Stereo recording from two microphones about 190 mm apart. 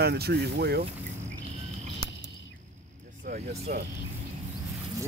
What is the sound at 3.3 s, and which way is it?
Speech, 55° right (ahead or behind).